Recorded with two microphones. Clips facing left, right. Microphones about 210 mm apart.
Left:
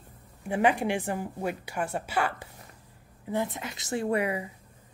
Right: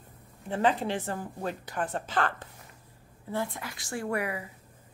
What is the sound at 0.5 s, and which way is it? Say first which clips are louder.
A woman's voice: left 2 dB; 15° left (ahead or behind).